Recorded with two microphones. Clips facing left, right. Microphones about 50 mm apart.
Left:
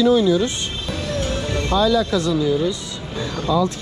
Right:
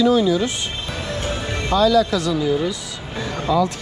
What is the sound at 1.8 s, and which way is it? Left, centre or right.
Speech, right.